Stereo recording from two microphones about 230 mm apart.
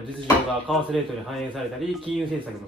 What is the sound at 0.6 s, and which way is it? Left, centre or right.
Speech, centre.